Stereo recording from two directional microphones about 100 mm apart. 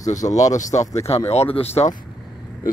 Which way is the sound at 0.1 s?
35° left (ahead or behind).